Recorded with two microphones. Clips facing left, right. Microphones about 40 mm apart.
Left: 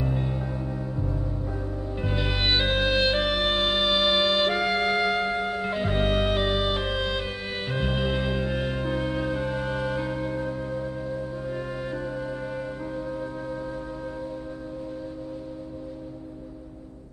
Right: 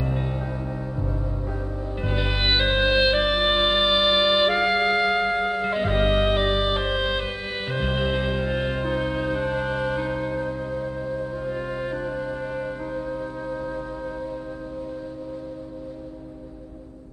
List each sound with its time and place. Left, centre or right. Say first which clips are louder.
0.0 s gong: right 1 dB; centre
2.0 s music: right 2 dB; centre